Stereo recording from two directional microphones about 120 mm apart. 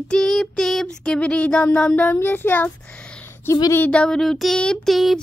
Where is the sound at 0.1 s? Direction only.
5° left (ahead or behind).